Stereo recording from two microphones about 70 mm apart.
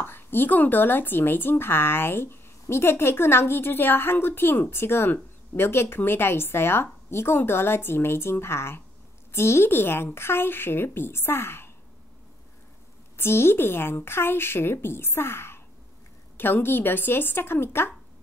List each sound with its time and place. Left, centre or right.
0.0 s a woman's voice: left
13.2 s a woman's voice: left